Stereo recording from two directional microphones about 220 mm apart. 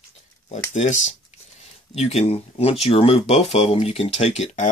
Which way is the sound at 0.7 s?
30° left (ahead or behind).